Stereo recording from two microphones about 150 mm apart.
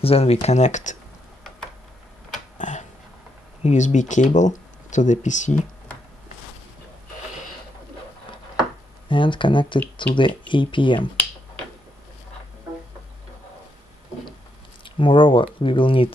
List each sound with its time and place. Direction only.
0.0 s speech: 40° left (ahead or behind)
2.6 s a sound: 55° left (ahead or behind)
3.6 s speech: 55° left (ahead or behind)
9.1 s speech: 35° left (ahead or behind)
11.0 s finger snapping: 10° left (ahead or behind)
15.0 s speech: 35° left (ahead or behind)